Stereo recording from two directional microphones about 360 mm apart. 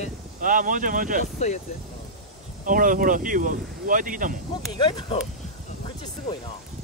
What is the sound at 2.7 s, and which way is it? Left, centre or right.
Speech, right.